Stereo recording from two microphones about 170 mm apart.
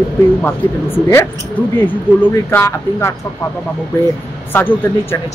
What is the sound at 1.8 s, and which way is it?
Speech, 10° left (ahead or behind).